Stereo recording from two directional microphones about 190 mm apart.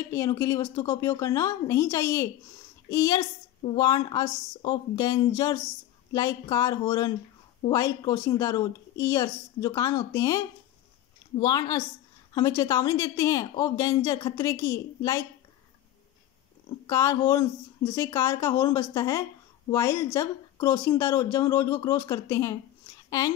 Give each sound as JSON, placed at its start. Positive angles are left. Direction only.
{"t": 0.1, "sound": "a woman's voice", "side_deg": 15}
{"t": 16.8, "sound": "speech", "side_deg": 15}
{"t": 23.0, "sound": "a sound", "side_deg": 20}